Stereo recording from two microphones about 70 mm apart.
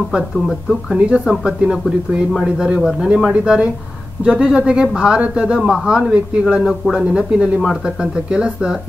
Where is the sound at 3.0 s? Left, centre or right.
Centre.